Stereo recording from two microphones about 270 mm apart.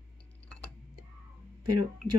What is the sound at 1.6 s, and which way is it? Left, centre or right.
Speech, right.